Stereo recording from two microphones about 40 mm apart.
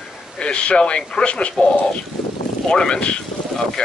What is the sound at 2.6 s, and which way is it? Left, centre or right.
Speech, centre.